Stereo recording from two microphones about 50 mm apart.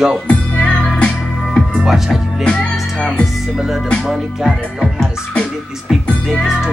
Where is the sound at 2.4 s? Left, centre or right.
Centre.